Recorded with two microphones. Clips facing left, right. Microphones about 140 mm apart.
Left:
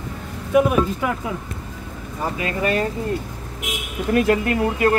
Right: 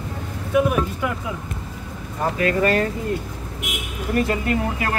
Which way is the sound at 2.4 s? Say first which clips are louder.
Right 4 dB; 15° left (ahead or behind).